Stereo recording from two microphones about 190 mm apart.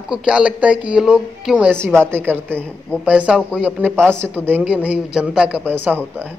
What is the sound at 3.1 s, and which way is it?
A man's voice, 5° right (ahead or behind).